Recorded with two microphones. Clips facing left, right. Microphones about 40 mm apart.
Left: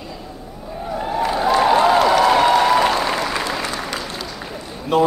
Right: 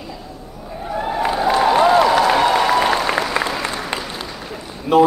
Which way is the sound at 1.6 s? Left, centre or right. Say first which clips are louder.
Right 1 dB; centre.